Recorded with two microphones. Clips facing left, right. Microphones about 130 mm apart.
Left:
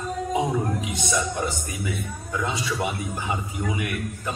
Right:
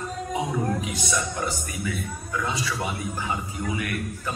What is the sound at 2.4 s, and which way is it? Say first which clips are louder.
Speech: left 2 dB; 25° left (ahead or behind).